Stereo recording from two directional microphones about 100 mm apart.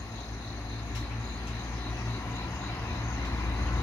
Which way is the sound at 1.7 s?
25° left (ahead or behind).